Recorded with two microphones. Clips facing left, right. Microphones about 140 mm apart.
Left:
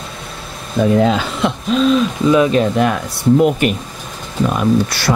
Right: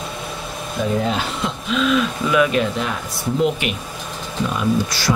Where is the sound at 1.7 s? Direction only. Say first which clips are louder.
Left 4 dB; 35° left (ahead or behind).